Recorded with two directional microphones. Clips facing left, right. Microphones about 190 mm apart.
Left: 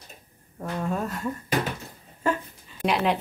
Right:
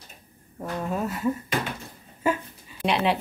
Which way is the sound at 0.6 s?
5° right (ahead or behind).